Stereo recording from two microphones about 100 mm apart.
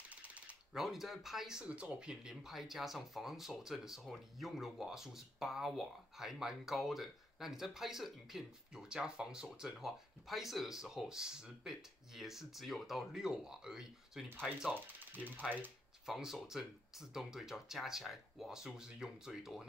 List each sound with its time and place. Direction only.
0.1 s typing: 15° right (ahead or behind)
0.7 s speech: centre (ahead or behind)
14.7 s speech: 20° right (ahead or behind)
16.1 s speech: 5° right (ahead or behind)